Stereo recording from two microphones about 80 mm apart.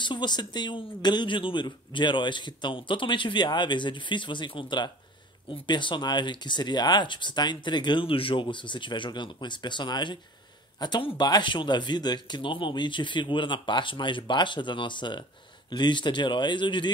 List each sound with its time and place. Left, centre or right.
0.0 s speech: left
5.5 s speech: left